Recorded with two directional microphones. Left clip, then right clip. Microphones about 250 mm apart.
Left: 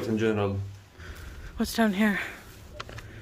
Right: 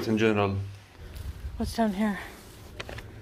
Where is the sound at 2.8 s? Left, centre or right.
Right.